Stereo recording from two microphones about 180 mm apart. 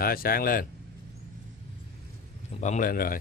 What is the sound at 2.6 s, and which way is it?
Speech, 45° left (ahead or behind).